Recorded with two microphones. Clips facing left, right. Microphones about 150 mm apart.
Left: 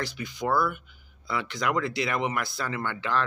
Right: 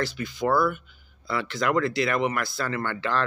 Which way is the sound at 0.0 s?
15° left (ahead or behind).